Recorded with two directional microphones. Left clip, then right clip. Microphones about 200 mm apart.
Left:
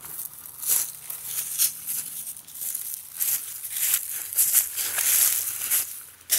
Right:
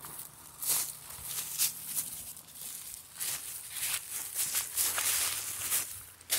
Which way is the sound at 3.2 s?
55° left (ahead or behind).